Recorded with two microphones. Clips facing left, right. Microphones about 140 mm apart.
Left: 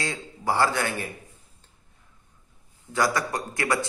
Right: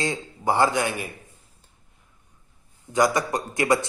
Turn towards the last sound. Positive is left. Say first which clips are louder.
# right 4 dB
turn(degrees=-20)  # may be behind; listen again after turning